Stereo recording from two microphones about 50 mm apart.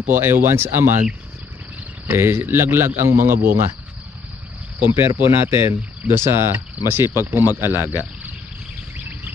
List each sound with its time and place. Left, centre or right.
0.1 s speech: right
2.0 s speech: right
4.8 s speech: right